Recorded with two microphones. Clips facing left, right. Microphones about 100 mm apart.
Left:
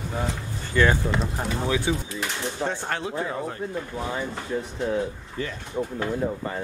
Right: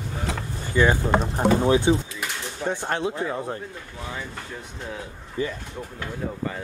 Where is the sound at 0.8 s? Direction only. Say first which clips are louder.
Right 1 dB; 15° right (ahead or behind).